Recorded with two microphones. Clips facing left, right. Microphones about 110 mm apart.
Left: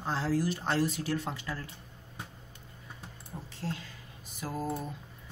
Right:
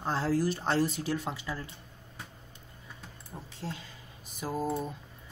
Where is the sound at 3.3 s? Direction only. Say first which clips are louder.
Left 2 dB; 15° right (ahead or behind).